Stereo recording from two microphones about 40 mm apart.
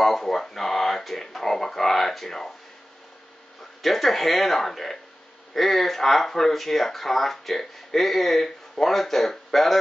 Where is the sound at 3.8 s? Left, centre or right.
Centre.